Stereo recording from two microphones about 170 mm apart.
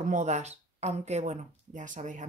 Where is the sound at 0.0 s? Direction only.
45° right (ahead or behind).